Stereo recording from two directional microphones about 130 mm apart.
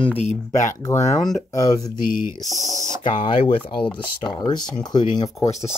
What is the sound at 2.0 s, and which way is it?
Speech, 90° left.